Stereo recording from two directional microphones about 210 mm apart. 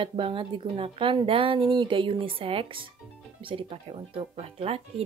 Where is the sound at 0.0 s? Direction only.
25° right (ahead or behind).